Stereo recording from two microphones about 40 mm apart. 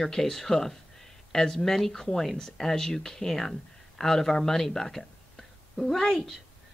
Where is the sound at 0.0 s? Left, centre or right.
Centre.